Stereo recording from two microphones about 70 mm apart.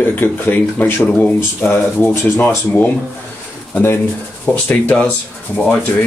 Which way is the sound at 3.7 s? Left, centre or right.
Left.